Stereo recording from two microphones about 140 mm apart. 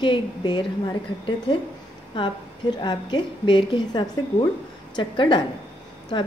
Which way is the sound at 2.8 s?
35° left (ahead or behind).